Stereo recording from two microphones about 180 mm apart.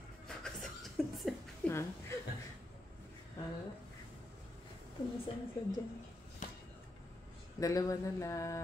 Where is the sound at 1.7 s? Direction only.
15° left (ahead or behind).